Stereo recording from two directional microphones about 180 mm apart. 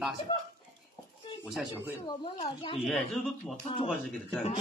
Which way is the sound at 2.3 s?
30° left (ahead or behind).